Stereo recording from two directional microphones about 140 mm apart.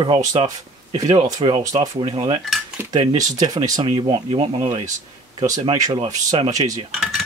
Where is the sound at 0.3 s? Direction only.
35° right (ahead or behind).